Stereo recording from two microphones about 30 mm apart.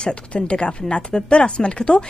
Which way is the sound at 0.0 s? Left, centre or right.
Left.